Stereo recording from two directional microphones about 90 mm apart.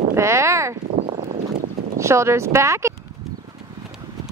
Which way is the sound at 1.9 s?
30° right (ahead or behind).